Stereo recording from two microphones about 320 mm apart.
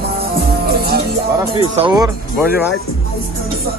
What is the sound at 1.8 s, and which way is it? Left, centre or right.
Speech, centre.